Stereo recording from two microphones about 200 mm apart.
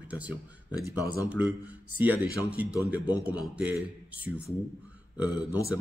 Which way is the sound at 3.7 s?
5° right (ahead or behind).